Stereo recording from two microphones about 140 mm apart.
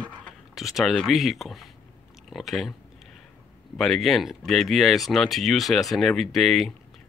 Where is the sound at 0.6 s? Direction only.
Centre (ahead or behind).